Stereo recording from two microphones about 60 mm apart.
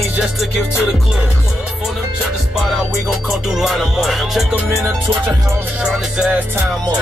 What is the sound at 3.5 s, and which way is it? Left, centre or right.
Music, centre.